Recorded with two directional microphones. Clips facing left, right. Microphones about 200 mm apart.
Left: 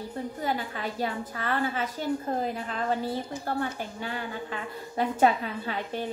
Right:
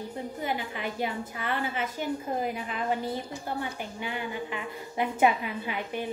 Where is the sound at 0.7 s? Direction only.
15° right (ahead or behind).